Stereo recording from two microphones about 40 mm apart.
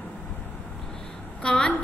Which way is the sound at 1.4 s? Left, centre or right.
Left.